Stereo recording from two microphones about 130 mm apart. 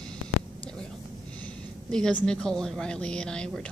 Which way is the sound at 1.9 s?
5° left (ahead or behind).